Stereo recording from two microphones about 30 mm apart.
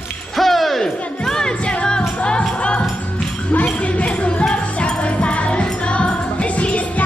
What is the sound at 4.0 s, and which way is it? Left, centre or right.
Music, left.